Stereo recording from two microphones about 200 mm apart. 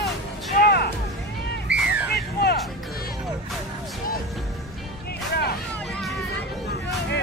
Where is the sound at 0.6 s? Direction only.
55° left (ahead or behind).